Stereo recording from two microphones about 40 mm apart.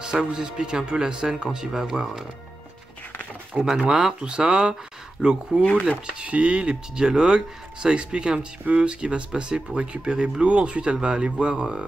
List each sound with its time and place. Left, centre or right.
0.0 s speech: centre
3.6 s speech: right